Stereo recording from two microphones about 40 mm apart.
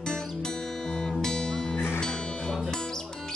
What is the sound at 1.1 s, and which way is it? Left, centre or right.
Music, centre.